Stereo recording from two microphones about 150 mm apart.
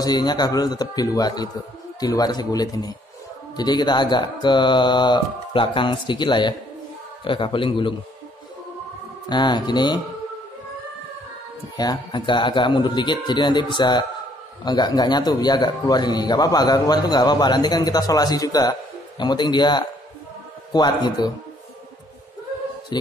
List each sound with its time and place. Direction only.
0.0 s a man's voice: 25° left (ahead or behind)
9.3 s a man's voice: 30° left (ahead or behind)
11.7 s a man's voice: 25° left (ahead or behind)